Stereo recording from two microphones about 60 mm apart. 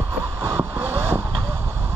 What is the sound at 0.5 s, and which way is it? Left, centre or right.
Vehicle, right.